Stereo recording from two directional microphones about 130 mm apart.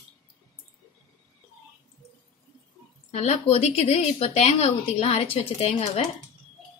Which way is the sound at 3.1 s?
55° left (ahead or behind).